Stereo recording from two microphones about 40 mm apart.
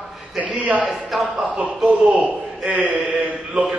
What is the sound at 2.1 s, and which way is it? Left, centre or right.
Speech, right.